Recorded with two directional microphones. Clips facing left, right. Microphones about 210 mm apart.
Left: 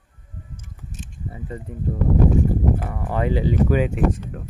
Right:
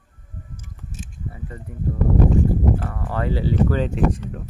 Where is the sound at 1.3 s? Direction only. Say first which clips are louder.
Left 6 dB; 20° left (ahead or behind).